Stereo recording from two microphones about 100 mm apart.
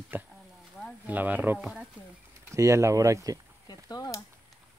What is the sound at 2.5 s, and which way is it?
Speech, 30° right (ahead or behind).